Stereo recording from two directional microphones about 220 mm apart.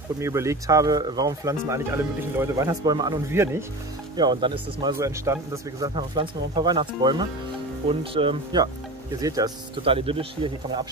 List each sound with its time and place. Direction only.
0.2 s speech: 15° right (ahead or behind)